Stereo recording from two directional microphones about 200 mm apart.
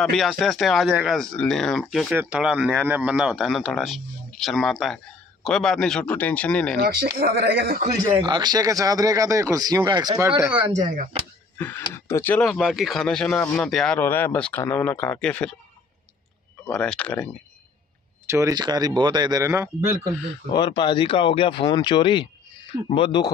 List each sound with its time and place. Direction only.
0.0 s speech: centre (ahead or behind)
6.8 s speech: 50° right (ahead or behind)
8.0 s speech: 20° right (ahead or behind)
10.8 s speech: 40° right (ahead or behind)
11.5 s speech: 10° left (ahead or behind)
16.6 s speech: 5° left (ahead or behind)
18.3 s speech: 15° right (ahead or behind)
20.5 s speech: 20° left (ahead or behind)